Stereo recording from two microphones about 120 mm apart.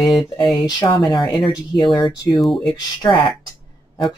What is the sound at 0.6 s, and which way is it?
Speech, 35° left (ahead or behind).